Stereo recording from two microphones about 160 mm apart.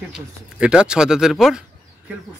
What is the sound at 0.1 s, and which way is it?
Speech, 5° right (ahead or behind).